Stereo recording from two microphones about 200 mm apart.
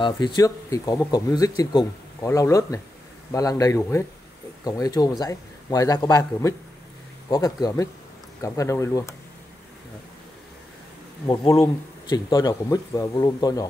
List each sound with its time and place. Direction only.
0.0 s speech: 20° left (ahead or behind)
11.2 s a man's voice: 25° left (ahead or behind)